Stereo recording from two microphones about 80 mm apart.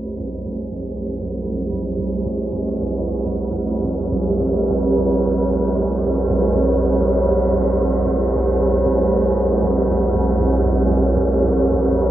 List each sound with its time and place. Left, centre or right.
4.5 s gong: centre